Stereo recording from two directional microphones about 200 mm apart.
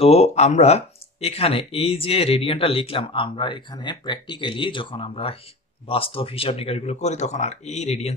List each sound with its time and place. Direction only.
0.0 s speech: 30° left (ahead or behind)